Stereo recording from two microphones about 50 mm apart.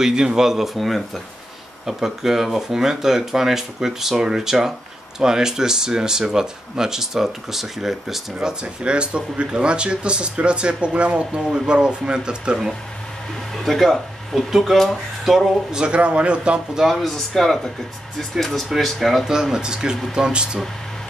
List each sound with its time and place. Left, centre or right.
0.0 s speech: centre
0.7 s speech: centre
1.9 s speech: centre
13.7 s speech: centre
15.7 s a man's voice: right
16.9 s speech: centre
19.5 s speech: centre